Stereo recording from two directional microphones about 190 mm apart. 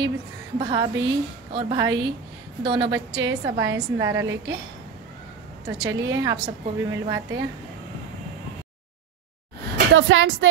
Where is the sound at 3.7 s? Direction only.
15° right (ahead or behind).